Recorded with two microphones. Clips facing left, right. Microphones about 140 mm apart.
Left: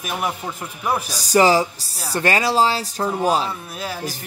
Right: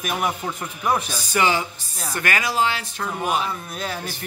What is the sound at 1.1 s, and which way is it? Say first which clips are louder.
Speech: left 6 dB; 35° left (ahead or behind).